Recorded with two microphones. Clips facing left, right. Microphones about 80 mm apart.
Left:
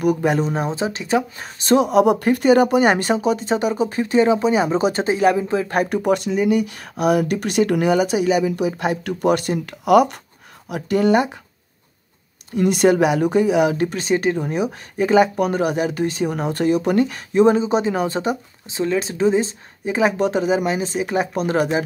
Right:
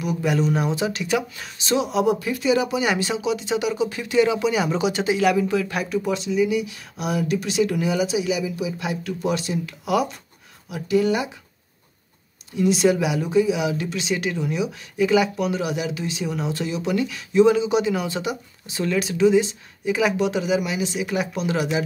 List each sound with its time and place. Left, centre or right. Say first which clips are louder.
0.0 s speech: left 4 dB; left
12.5 s speech: left 4 dB; left
18.7 s speech: left 2 dB; left